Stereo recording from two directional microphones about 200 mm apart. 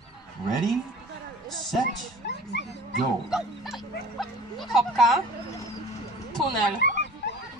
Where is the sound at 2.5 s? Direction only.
60° left (ahead or behind).